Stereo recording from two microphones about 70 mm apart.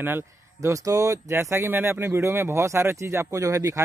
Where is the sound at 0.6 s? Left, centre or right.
Right.